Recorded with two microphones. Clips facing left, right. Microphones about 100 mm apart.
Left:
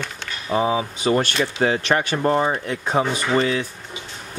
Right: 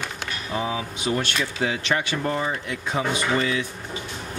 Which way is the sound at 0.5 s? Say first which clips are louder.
Left 7 dB; 25° left (ahead or behind).